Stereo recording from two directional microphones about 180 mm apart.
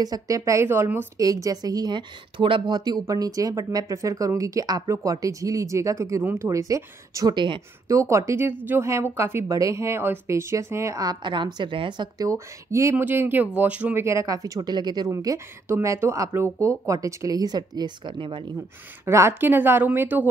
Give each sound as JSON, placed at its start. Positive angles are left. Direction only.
{"t": 0.0, "sound": "a woman's voice", "side_deg": -20}
{"t": 19.0, "sound": "a woman's voice", "side_deg": -15}